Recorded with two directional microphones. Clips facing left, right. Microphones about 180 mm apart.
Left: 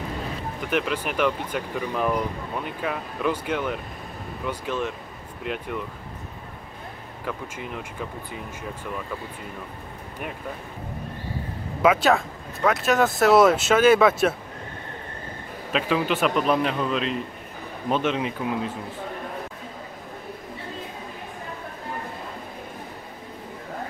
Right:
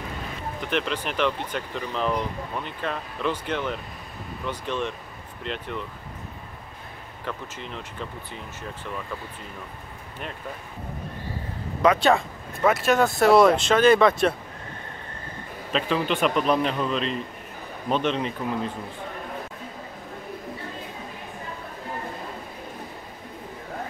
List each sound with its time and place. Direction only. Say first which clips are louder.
0.7 s speech: left 2 dB; 5° left (ahead or behind)
7.2 s speech: left 2 dB; 5° left (ahead or behind)
11.8 s speech: even; 5° left (ahead or behind)
15.7 s speech: left 1 dB; 5° left (ahead or behind)